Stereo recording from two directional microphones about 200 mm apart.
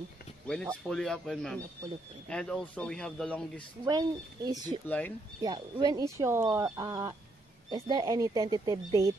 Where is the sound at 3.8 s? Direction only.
20° right (ahead or behind).